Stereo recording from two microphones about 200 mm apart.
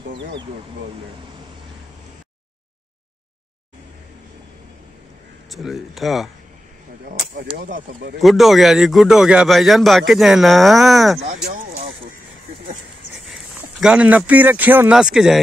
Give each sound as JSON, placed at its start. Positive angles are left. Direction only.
{"t": 5.5, "sound": "speech", "side_deg": 0}
{"t": 7.5, "sound": "speech", "side_deg": -40}
{"t": 8.2, "sound": "speech", "side_deg": 0}
{"t": 13.2, "sound": "speech", "side_deg": 0}